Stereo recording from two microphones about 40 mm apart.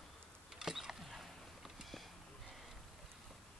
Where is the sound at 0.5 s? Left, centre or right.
Centre.